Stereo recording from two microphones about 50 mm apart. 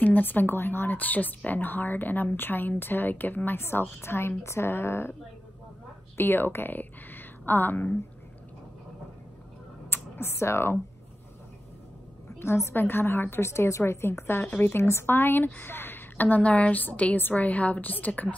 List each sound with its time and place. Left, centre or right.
0.0 s speech: left
3.5 s a woman's voice: left
6.1 s a woman's voice: left
9.8 s a sound: left
12.4 s a woman's voice: left
15.0 s speech: left